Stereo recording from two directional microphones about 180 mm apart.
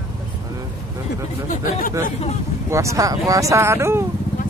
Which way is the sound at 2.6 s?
15° right (ahead or behind).